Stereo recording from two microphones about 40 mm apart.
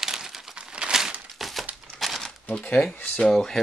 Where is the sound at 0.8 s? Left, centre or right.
Right.